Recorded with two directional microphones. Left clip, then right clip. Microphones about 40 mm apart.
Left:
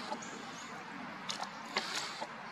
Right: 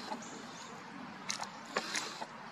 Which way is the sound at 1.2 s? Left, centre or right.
Right.